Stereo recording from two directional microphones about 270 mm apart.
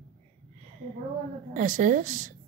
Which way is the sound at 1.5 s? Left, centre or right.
Right.